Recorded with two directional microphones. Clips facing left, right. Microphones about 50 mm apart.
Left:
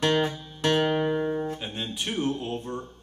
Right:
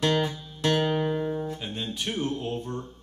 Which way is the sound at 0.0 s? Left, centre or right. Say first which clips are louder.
Left 1 dB; left.